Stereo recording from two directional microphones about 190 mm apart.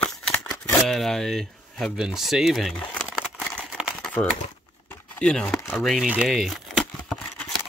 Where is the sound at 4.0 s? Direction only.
5° left (ahead or behind).